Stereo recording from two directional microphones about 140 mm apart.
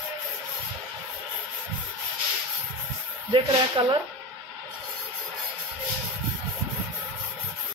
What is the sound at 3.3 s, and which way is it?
Speech, 35° right (ahead or behind).